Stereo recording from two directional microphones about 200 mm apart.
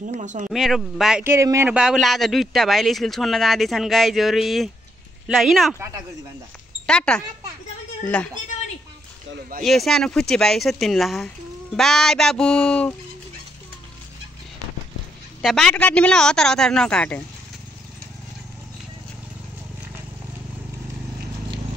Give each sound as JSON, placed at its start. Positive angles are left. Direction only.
{"t": 0.0, "sound": "speech", "side_deg": -40}
{"t": 0.5, "sound": "a man's voice", "side_deg": 0}
{"t": 6.9, "sound": "a man's voice", "side_deg": 5}
{"t": 9.6, "sound": "a man's voice", "side_deg": 0}
{"t": 15.4, "sound": "a man's voice", "side_deg": 0}